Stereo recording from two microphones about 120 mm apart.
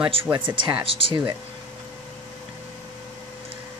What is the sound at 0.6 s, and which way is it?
Speech, 40° right (ahead or behind).